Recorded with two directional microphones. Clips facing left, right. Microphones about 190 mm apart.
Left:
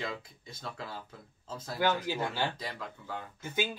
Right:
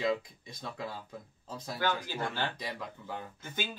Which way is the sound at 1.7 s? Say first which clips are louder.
Left 4 dB; 15° left (ahead or behind).